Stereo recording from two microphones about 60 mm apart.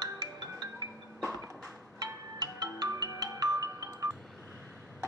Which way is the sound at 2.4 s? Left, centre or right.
Right.